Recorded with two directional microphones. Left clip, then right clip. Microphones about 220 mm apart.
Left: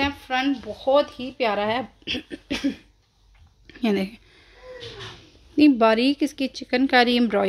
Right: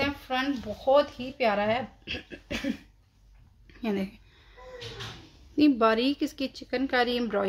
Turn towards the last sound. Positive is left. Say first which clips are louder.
# left 7 dB
turn(degrees=30)  # may be behind; listen again after turning